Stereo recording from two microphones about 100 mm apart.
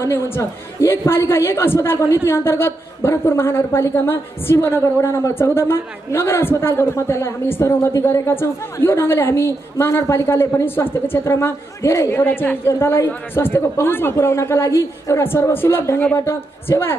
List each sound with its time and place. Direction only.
0.0 s a woman's voice: 25° left (ahead or behind)